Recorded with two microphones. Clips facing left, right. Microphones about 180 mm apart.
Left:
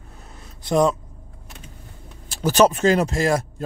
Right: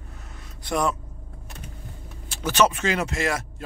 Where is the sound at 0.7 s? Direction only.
25° left (ahead or behind).